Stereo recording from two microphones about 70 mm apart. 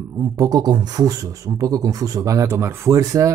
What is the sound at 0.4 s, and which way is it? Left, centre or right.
Speech, right.